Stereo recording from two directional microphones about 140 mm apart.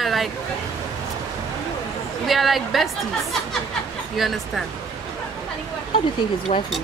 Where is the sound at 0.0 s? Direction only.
Centre (ahead or behind).